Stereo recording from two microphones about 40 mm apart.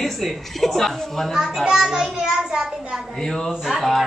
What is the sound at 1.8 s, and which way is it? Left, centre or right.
Speech, centre.